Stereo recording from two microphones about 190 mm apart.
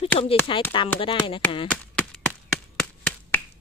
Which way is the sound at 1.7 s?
5° left (ahead or behind).